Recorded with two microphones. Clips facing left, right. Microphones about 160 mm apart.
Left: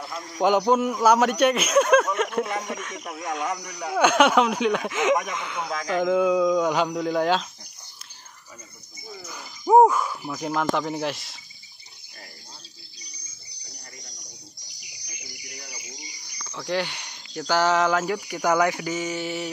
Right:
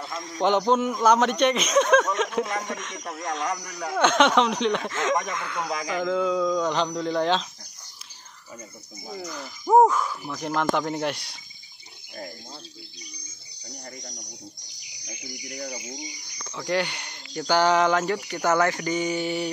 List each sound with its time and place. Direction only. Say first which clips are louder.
0.0 s a man's voice: left 1 dB; 5° left (ahead or behind)
9.2 s speech: left 2 dB; centre (ahead or behind)
13.1 s cricket: right 5 dB; 45° right (ahead or behind)
14.8 s bird: right 7 dB; 20° right (ahead or behind)
15.4 s speech: right 10 dB; 45° right (ahead or behind)
16.5 s speech: right 1 dB; centre (ahead or behind)